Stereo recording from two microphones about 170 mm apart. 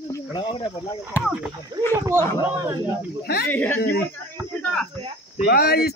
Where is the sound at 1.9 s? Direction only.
20° right (ahead or behind).